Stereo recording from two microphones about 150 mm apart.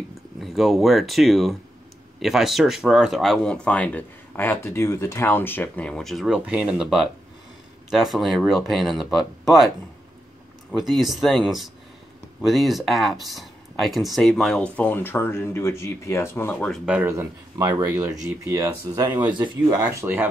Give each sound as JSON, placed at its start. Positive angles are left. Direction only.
{"t": 0.4, "sound": "speech", "side_deg": 0}
{"t": 10.8, "sound": "speech", "side_deg": 0}
{"t": 16.8, "sound": "speech", "side_deg": -10}
{"t": 17.6, "sound": "speech", "side_deg": -25}
{"t": 19.3, "sound": "speech", "side_deg": -30}